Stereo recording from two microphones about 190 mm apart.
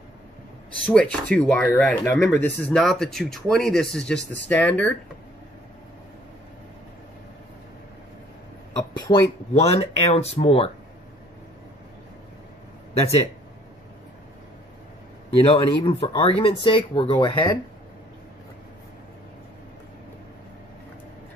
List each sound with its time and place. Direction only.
0.8 s speech: 5° left (ahead or behind)
9.1 s speech: 25° left (ahead or behind)
15.4 s speech: 30° left (ahead or behind)